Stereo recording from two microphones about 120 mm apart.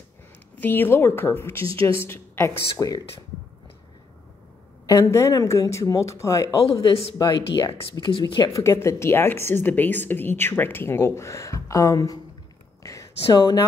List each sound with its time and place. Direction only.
0.6 s speech: 15° left (ahead or behind)
1.7 s speech: 50° right (ahead or behind)
2.0 s speech: 20° left (ahead or behind)
4.8 s speech: 25° left (ahead or behind)
6.6 s speech: 55° left (ahead or behind)
7.2 s speech: 35° left (ahead or behind)
12.8 s a sound: 25° left (ahead or behind)